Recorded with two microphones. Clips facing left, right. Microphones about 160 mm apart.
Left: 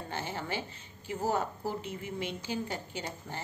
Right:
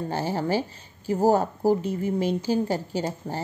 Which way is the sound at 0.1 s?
35° right (ahead or behind).